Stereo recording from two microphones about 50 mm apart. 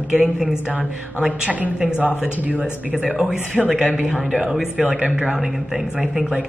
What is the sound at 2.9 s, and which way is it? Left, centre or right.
Speech, centre.